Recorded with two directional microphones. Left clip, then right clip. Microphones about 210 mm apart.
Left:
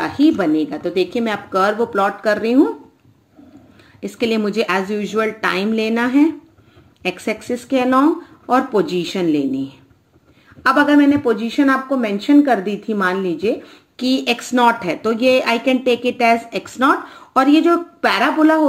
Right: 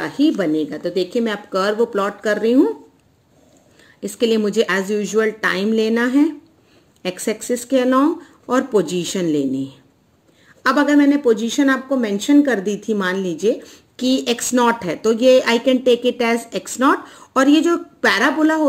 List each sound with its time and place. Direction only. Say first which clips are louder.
0.3 s speech: left 2 dB; 35° right (ahead or behind)
4.2 s speech: right 2 dB; 40° right (ahead or behind)
10.6 s speech: left 2 dB; 50° right (ahead or behind)